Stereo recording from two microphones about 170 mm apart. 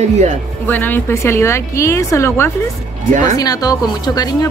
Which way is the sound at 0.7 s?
10° left (ahead or behind).